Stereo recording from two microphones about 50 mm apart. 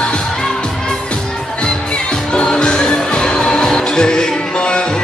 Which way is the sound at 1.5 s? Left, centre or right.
Centre.